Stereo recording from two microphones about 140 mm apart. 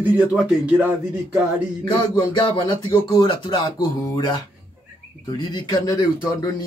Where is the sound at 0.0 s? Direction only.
10° right (ahead or behind).